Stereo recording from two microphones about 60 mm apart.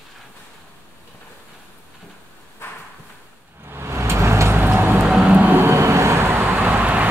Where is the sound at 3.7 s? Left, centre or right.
Right.